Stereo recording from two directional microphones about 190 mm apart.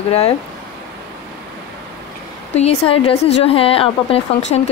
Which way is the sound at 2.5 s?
35° left (ahead or behind).